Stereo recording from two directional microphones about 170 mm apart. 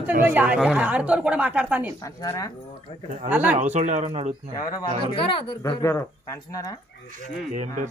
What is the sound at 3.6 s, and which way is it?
Speech, 45° right (ahead or behind).